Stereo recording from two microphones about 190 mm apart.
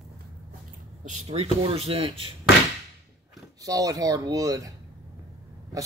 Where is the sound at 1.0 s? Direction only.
35° right (ahead or behind).